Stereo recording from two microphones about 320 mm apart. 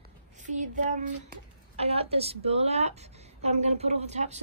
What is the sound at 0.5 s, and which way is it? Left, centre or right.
A woman's voice, right.